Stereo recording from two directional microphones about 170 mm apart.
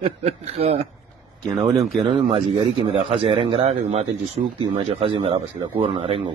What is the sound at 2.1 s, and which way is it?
A man's voice, 40° right (ahead or behind).